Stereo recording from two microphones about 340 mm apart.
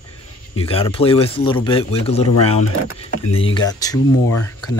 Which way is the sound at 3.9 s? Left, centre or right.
Left.